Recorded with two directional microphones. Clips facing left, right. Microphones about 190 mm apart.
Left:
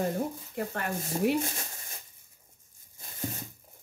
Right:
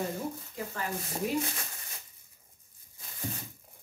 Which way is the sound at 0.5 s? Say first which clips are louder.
Left 7 dB; 60° left (ahead or behind).